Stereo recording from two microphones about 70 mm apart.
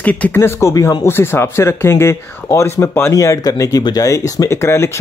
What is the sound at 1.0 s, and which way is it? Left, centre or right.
Speech, left.